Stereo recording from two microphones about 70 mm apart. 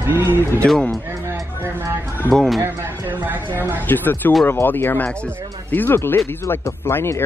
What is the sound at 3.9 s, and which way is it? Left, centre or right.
Speech, left.